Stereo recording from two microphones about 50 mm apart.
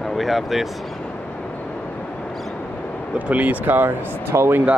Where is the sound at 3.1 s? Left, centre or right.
Right.